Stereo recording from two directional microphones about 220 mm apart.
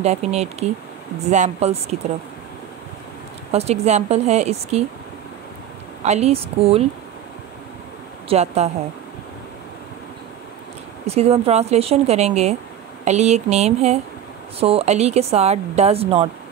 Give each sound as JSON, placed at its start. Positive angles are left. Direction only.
{"t": 0.0, "sound": "speech", "side_deg": -30}
{"t": 3.5, "sound": "speech", "side_deg": -30}
{"t": 6.0, "sound": "speech", "side_deg": -30}
{"t": 8.3, "sound": "speech", "side_deg": -30}
{"t": 11.1, "sound": "speech", "side_deg": -30}